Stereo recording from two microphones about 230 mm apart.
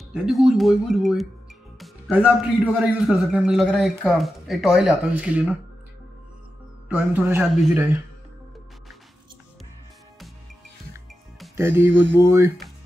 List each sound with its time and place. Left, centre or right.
0.1 s a man's voice: centre
6.9 s speech: centre
11.5 s speech: centre